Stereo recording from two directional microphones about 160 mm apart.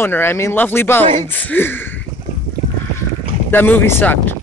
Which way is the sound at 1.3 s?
10° left (ahead or behind).